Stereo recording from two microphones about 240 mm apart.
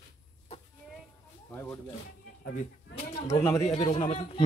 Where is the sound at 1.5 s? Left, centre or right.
Centre.